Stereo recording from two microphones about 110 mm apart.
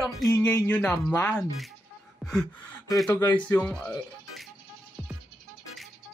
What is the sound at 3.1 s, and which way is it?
Speech, 15° left (ahead or behind).